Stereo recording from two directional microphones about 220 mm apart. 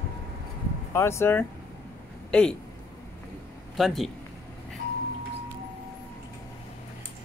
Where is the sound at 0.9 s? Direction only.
10° left (ahead or behind).